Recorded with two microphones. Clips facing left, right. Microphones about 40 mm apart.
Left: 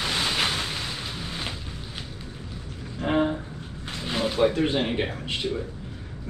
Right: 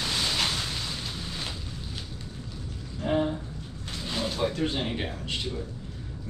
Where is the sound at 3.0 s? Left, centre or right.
Left.